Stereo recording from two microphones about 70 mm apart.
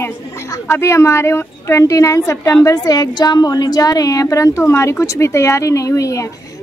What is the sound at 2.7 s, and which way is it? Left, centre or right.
A woman's voice, left.